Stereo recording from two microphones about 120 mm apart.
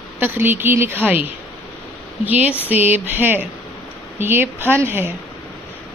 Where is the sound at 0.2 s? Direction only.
15° right (ahead or behind).